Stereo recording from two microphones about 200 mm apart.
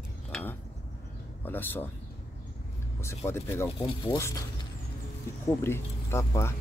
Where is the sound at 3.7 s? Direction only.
25° left (ahead or behind).